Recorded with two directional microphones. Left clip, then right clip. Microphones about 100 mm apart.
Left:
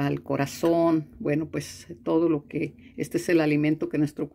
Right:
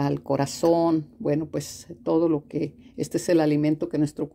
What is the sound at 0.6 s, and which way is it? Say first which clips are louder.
Speech: right 1 dB; 25° right (ahead or behind).